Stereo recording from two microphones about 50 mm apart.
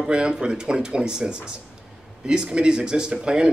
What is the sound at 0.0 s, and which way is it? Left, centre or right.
Speech, centre.